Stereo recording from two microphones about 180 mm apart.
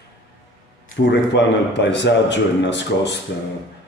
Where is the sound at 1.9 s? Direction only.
80° left.